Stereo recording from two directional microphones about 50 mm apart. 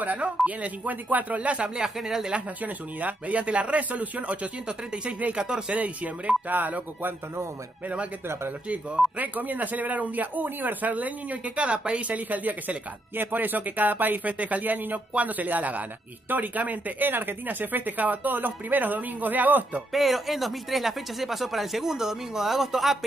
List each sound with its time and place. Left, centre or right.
0.0 s a man's voice: right
1.8 s speech: centre
2.3 s speech: right
5.8 s a man's voice: right
9.2 s a man's voice: right
19.9 s speech: centre